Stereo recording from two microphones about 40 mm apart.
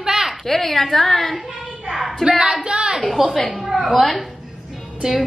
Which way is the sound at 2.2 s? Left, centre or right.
Centre.